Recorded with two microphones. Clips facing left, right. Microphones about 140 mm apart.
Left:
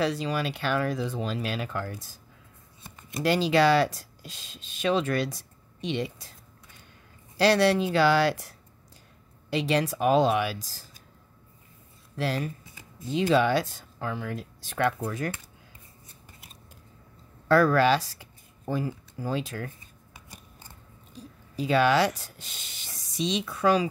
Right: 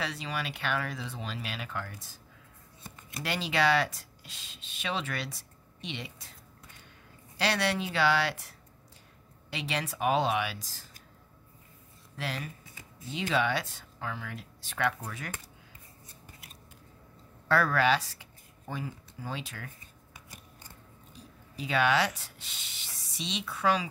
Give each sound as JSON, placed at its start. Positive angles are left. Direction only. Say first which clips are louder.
{"t": 0.0, "sound": "speech", "louder": "left 8 dB", "side_deg": 40}
{"t": 3.1, "sound": "speech", "louder": "left 10 dB", "side_deg": 35}
{"t": 7.3, "sound": "speech", "louder": "left 9 dB", "side_deg": 40}
{"t": 12.2, "sound": "speech", "louder": "left 8 dB", "side_deg": 40}
{"t": 17.5, "sound": "speech", "louder": "left 5 dB", "side_deg": 40}
{"t": 21.5, "sound": "speech", "louder": "left 5 dB", "side_deg": 35}